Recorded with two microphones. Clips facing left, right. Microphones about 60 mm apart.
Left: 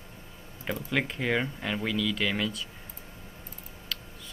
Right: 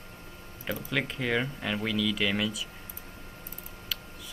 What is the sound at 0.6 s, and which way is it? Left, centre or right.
Speech, centre.